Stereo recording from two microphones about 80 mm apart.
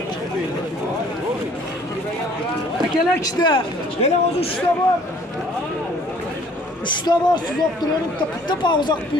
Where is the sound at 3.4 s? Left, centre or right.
Left.